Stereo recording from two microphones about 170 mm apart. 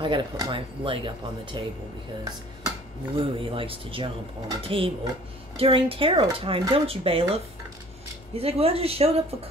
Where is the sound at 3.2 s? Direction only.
30° right (ahead or behind).